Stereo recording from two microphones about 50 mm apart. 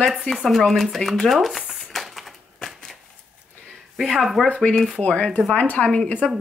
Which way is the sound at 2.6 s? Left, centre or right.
Centre.